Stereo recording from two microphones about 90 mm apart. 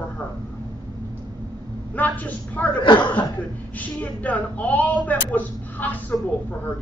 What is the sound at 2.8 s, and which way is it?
Speech, 65° left (ahead or behind).